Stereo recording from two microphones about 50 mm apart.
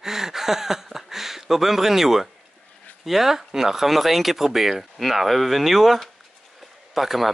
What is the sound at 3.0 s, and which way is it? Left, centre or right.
Speech, centre.